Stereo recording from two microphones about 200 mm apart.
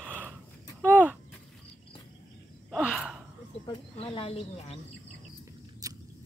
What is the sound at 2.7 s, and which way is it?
Gasp, centre (ahead or behind).